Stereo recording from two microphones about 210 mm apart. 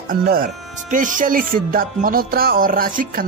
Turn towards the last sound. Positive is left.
turn(degrees=-40)  # may be behind; listen again after turning